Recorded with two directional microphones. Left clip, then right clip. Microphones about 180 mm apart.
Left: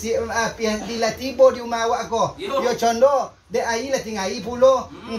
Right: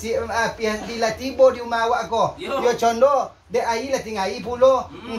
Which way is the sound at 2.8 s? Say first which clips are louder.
Left 1 dB; 15° left (ahead or behind).